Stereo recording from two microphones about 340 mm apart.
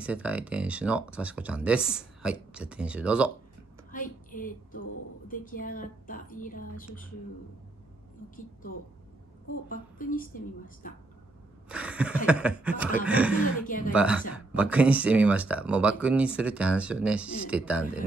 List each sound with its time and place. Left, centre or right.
0.0 s speech: centre
3.9 s a woman's voice: left
9.7 s speech: left
11.7 s speech: centre
13.7 s speech: left
13.9 s speech: centre